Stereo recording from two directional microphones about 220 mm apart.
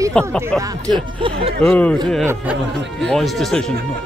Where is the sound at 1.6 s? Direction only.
5° left (ahead or behind).